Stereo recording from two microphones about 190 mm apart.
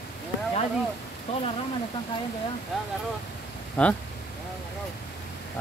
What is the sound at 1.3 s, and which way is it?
Speech, 35° left (ahead or behind).